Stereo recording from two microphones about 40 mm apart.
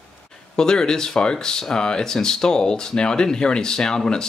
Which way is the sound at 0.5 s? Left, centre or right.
Centre.